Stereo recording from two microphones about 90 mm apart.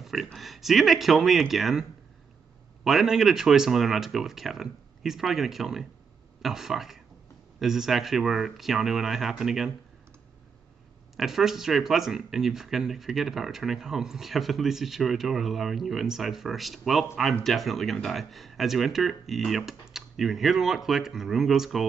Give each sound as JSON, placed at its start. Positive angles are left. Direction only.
{"t": 0.0, "sound": "speech", "side_deg": 0}
{"t": 11.1, "sound": "speech", "side_deg": -5}